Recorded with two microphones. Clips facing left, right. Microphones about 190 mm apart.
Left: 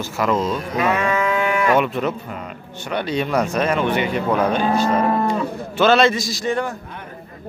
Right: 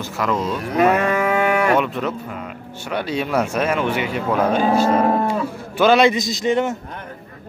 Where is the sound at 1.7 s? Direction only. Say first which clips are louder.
Left 1 dB; 5° left (ahead or behind).